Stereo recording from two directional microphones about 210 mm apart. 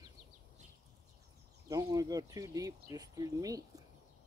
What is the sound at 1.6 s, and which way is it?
Speech, 15° right (ahead or behind).